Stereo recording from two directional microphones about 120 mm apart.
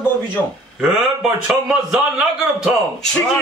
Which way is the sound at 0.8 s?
5° right (ahead or behind).